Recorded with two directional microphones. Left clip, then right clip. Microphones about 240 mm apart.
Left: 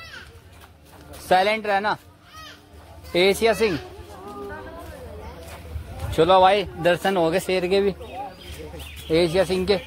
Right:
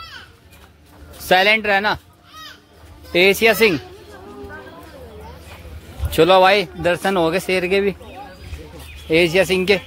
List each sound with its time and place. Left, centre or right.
1.3 s speech: centre
3.1 s speech: centre
6.1 s speech: centre
6.8 s speech: centre
9.1 s speech: centre